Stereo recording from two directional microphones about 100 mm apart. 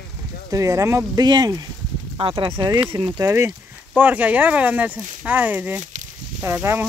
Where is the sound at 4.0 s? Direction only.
15° right (ahead or behind).